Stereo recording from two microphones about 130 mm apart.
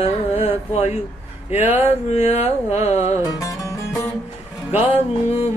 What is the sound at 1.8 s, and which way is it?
Mantra, 50° left (ahead or behind).